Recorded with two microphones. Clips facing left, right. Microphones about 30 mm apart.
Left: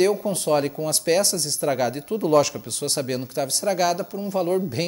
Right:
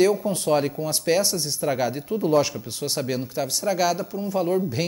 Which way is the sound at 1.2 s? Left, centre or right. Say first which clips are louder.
Left 1 dB; left.